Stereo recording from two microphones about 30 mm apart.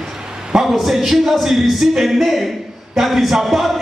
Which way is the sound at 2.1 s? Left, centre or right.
Centre.